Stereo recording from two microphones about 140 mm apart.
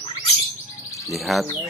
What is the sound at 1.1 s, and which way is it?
Speech, centre (ahead or behind).